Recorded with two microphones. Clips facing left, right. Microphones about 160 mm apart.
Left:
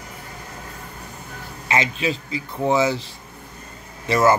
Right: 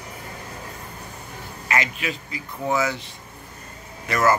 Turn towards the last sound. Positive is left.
turn(degrees=25)  # may be behind; listen again after turning